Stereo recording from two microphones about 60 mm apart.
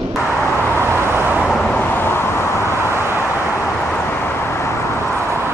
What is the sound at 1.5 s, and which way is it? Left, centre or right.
Vehicle, centre.